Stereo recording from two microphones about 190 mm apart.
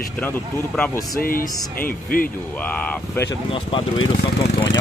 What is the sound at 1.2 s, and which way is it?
Speech, 50° left (ahead or behind).